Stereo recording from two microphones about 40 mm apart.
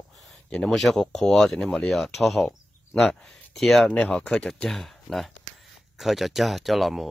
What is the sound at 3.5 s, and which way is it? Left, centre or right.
Speech, centre.